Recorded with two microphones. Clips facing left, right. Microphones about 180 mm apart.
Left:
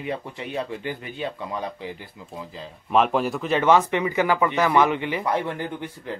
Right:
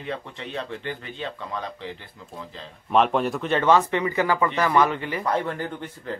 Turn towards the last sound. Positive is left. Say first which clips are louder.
# left 1 dB
turn(degrees=15)  # may be behind; listen again after turning